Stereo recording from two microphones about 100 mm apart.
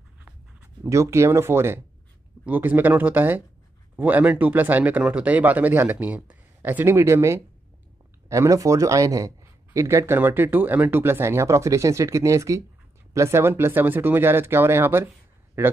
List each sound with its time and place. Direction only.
0.8 s a man's voice: 30° right (ahead or behind)